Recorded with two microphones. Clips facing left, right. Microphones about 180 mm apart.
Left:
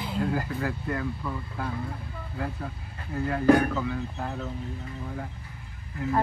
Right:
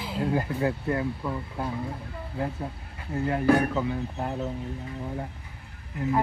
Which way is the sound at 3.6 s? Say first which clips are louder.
Right 1 dB; 25° right (ahead or behind).